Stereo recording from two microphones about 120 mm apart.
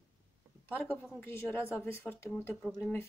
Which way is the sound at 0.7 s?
15° left (ahead or behind).